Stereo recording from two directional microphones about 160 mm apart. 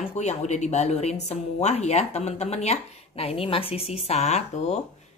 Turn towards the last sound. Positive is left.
turn(degrees=45)  # may be behind; listen again after turning